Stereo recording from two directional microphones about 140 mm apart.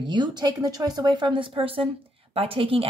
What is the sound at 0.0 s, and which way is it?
Speech, 35° right (ahead or behind).